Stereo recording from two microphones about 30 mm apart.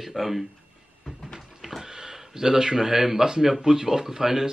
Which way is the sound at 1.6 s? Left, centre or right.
Centre.